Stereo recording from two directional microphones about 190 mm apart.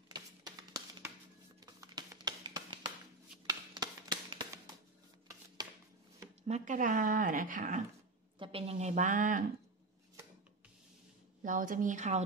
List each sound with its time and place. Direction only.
0.1 s music: 20° right (ahead or behind)
3.4 s a sound: 20° right (ahead or behind)
6.4 s speech: 40° right (ahead or behind)
8.4 s a woman's voice: 30° right (ahead or behind)
11.4 s speech: 45° right (ahead or behind)